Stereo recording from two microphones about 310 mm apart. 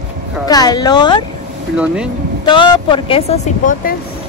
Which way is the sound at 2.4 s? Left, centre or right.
Centre.